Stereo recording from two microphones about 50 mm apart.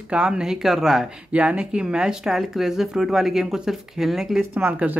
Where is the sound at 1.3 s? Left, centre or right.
Right; by 4.4 s centre.